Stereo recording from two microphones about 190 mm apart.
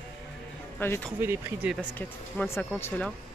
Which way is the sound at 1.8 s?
10° left (ahead or behind).